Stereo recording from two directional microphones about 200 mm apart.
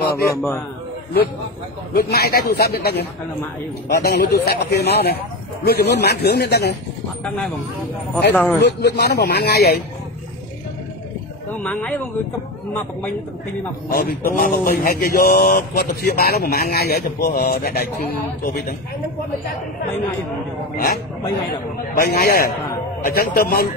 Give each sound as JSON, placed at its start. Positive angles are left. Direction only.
{"t": 0.2, "sound": "speech", "side_deg": 15}
{"t": 2.0, "sound": "a man's voice", "side_deg": 50}
{"t": 8.3, "sound": "speech", "side_deg": 10}
{"t": 8.5, "sound": "speech", "side_deg": 60}
{"t": 11.6, "sound": "speech", "side_deg": 5}
{"t": 13.9, "sound": "speech", "side_deg": 45}
{"t": 20.7, "sound": "speech", "side_deg": 50}